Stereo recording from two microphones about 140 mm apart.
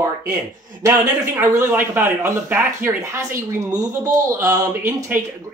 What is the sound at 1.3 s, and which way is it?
Speech, 15° right (ahead or behind).